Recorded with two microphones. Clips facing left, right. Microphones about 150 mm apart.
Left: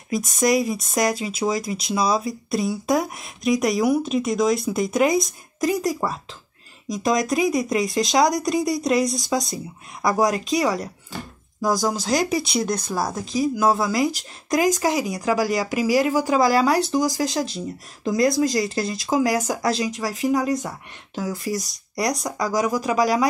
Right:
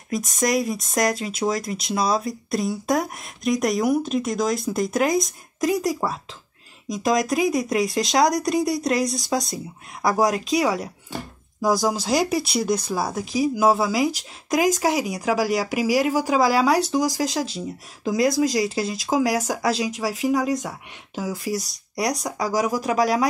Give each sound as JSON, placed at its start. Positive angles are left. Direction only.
{"t": 0.1, "sound": "speech", "side_deg": 0}